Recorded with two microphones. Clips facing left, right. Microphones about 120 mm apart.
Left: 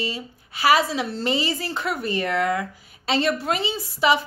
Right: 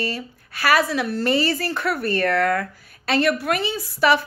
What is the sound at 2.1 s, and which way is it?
A woman's voice, 15° left (ahead or behind).